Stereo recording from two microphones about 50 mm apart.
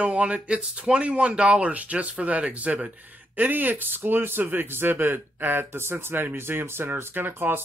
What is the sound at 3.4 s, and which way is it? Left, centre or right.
Speech, right.